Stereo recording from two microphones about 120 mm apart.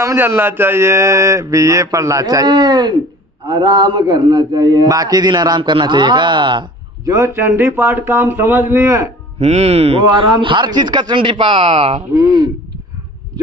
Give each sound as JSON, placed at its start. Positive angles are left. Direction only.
{"t": 0.0, "sound": "a man's voice", "side_deg": -20}
{"t": 7.1, "sound": "speech", "side_deg": -25}
{"t": 9.4, "sound": "a man's voice", "side_deg": -60}
{"t": 12.2, "sound": "a man's voice", "side_deg": -40}